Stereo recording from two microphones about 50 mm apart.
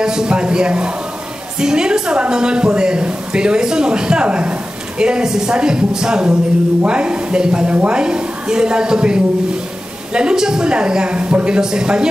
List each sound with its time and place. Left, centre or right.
0.0 s a man's voice: centre
7.7 s a woman's voice: right
8.0 s a woman's voice: centre